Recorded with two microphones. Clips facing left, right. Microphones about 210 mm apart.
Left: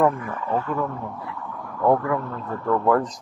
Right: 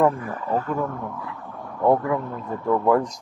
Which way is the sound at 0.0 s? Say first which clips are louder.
Even; 35° right (ahead or behind).